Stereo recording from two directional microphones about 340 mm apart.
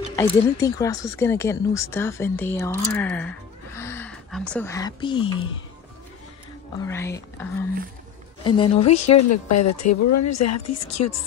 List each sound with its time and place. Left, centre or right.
0.1 s speech: centre
6.8 s speech: centre
8.5 s speech: centre
8.8 s speech: left